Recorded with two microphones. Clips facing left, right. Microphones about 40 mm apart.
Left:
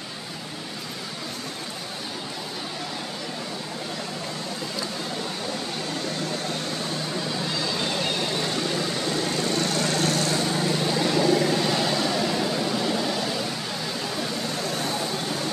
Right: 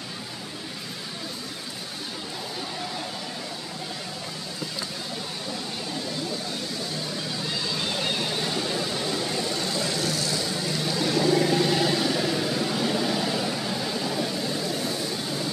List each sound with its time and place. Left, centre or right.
7.7 s vehicle: centre
8.0 s vehicle: centre
9.4 s vehicle: left
11.0 s vehicle: centre
11.2 s vehicle: centre